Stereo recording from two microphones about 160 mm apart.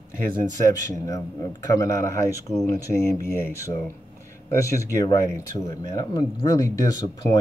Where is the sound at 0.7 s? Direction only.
20° left (ahead or behind).